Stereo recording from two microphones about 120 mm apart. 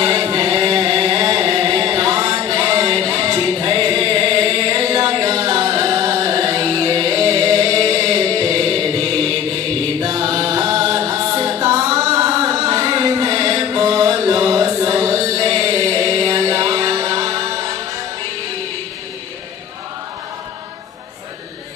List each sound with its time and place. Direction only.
0.0 s music: 40° right (ahead or behind)